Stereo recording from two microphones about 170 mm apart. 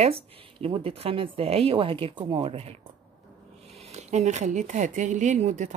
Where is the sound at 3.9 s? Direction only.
45° right (ahead or behind).